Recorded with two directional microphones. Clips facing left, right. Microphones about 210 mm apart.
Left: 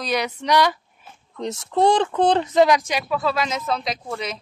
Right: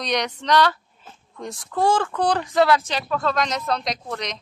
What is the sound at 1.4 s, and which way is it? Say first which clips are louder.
Speech: left 4 dB; 25° left (ahead or behind).